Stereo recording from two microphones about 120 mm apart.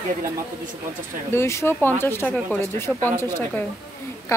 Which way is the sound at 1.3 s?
20° left (ahead or behind).